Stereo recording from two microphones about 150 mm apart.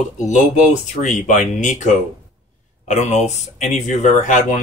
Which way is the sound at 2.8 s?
50° left (ahead or behind).